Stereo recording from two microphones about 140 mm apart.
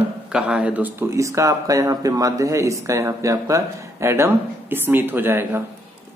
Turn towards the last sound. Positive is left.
turn(degrees=-15)  # may be behind; listen again after turning